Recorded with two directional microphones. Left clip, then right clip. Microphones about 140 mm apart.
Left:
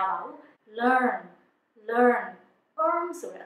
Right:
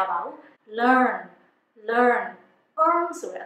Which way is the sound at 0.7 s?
20° right (ahead or behind).